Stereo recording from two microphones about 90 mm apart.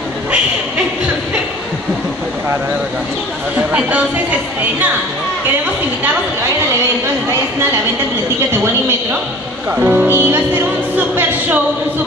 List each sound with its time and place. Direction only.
3.5 s speech: 15° right (ahead or behind)
9.7 s speech: 20° right (ahead or behind)